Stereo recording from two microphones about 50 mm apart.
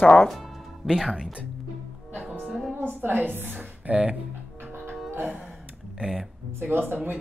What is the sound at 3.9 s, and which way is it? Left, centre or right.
Speech, right.